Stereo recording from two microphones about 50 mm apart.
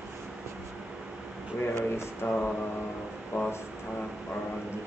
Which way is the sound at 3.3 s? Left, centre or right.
Left.